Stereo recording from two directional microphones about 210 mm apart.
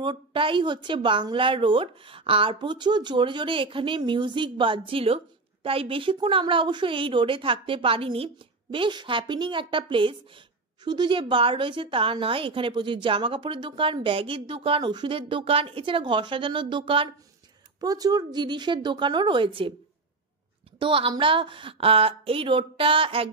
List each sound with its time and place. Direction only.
0.0 s speech: 25° right (ahead or behind)
20.8 s speech: 25° right (ahead or behind)